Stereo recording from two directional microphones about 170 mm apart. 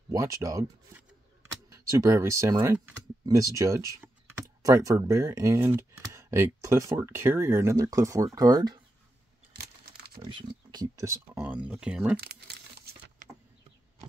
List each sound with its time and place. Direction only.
0.1 s speech: 20° right (ahead or behind)
9.8 s a sound: 65° right (ahead or behind)
10.7 s speech: 20° right (ahead or behind)
11.3 s speech: 10° right (ahead or behind)
12.2 s crumpling: 70° right (ahead or behind)